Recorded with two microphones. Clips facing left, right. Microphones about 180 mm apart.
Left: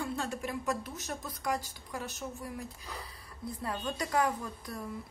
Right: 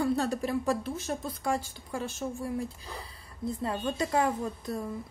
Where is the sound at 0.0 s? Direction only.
40° right (ahead or behind).